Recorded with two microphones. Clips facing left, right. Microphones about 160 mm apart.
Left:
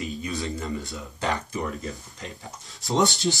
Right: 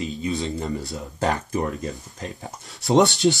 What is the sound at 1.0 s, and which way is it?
Speech, 40° right (ahead or behind).